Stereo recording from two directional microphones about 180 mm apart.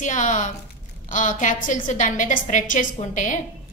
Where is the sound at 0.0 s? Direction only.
45° left (ahead or behind).